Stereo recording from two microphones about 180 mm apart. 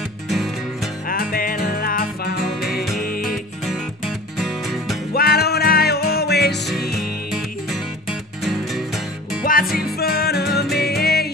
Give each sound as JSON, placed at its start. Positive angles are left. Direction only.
{"t": 1.0, "sound": "music", "side_deg": 55}
{"t": 2.4, "sound": "music", "side_deg": 0}
{"t": 3.0, "sound": "music", "side_deg": 50}
{"t": 3.6, "sound": "music", "side_deg": 0}
{"t": 5.1, "sound": "music", "side_deg": 60}
{"t": 7.0, "sound": "music", "side_deg": 0}
{"t": 9.4, "sound": "music", "side_deg": 55}